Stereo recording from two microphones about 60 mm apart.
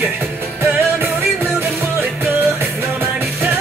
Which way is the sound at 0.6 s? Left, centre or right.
Right.